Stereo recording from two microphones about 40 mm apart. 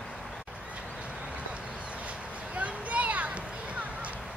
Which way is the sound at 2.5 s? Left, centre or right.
Right.